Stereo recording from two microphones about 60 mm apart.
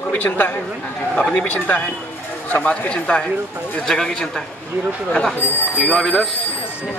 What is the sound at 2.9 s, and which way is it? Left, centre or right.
A man's voice, centre.